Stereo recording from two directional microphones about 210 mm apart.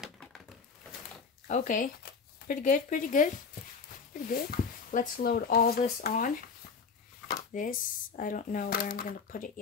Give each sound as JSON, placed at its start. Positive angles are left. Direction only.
{"t": 0.0, "sound": "a sound", "side_deg": 0}
{"t": 1.5, "sound": "speech", "side_deg": 40}
{"t": 7.5, "sound": "speech", "side_deg": 40}